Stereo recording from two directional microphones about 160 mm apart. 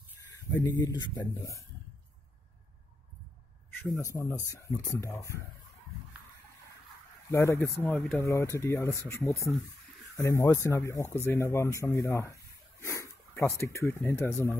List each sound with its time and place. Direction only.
0.7 s speech: 25° left (ahead or behind)
1.1 s speech: 15° left (ahead or behind)
3.9 s speech: 20° left (ahead or behind)
7.2 s speech: 15° left (ahead or behind)
12.8 s dog: 20° left (ahead or behind)
13.4 s speech: 20° left (ahead or behind)